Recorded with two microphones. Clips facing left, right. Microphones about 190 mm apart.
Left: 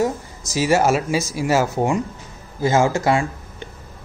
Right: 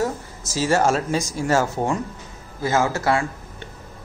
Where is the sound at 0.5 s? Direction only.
10° left (ahead or behind).